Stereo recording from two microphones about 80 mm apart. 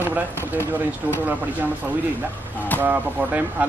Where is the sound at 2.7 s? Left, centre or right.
Right.